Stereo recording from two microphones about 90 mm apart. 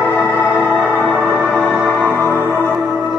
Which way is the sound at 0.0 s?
15° left (ahead or behind).